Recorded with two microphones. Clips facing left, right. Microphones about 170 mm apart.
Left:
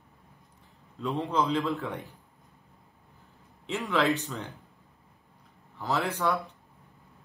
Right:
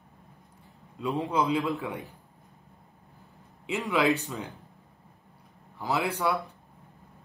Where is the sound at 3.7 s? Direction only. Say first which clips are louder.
Right 1 dB; 15° right (ahead or behind).